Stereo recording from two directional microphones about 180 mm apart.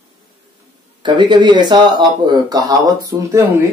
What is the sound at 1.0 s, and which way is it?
Speech, 25° right (ahead or behind).